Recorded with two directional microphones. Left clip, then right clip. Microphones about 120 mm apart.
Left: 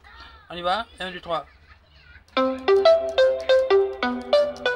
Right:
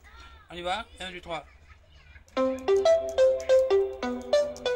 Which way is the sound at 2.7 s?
30° left (ahead or behind).